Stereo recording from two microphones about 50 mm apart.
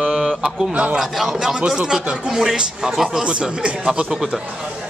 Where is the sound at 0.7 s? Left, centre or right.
Right.